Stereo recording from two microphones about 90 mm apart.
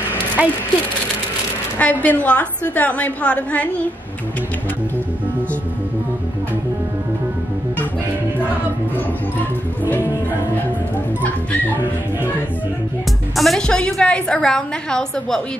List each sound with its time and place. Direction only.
0.4 s speech: 20° right (ahead or behind)
1.8 s a woman's voice: 20° left (ahead or behind)
11.7 s speech: 20° right (ahead or behind)
13.4 s a woman's voice: 5° left (ahead or behind)